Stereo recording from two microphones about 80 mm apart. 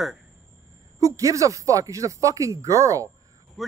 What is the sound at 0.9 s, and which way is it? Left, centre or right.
Speech, right.